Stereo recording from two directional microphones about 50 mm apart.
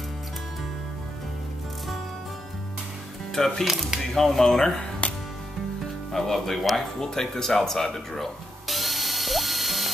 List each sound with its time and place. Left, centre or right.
3.3 s speech: centre
5.0 s music: left
6.1 s speech: centre
7.0 s music: centre